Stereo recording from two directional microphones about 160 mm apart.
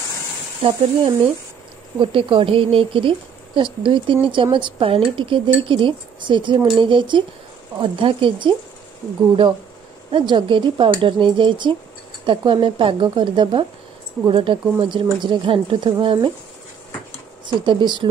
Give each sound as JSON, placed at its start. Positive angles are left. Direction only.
{"t": 0.6, "sound": "speech", "side_deg": -30}
{"t": 10.1, "sound": "speech", "side_deg": -30}
{"t": 17.6, "sound": "speech", "side_deg": -30}